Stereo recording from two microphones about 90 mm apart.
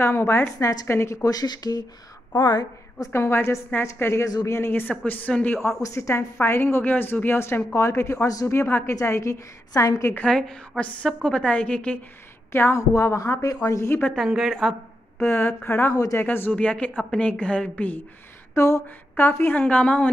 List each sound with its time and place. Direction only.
0.0 s a woman's voice: 25° left (ahead or behind); by 3.1 s 50° left (ahead or behind)
3.1 s a woman's voice: 25° left (ahead or behind)
4.3 s speech: 45° left (ahead or behind)
4.6 s a woman's voice: 25° left (ahead or behind)
5.6 s a woman's voice: 35° left (ahead or behind)
8.5 s a woman's voice: 25° left (ahead or behind)
10.1 s a woman's voice: 10° left (ahead or behind)
12.5 s a woman's voice: 30° left (ahead or behind)
14.1 s a woman's voice: 5° right (ahead or behind)
15.2 s a woman's voice: 25° left (ahead or behind)
15.9 s a woman's voice: 35° left (ahead or behind)
16.2 s a woman's voice: 20° left (ahead or behind)
18.5 s a woman's voice: 30° left (ahead or behind); by 20.1 s 15° left (ahead or behind)